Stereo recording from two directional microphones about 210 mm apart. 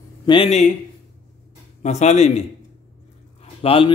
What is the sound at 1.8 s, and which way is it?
Speech, 35° left (ahead or behind).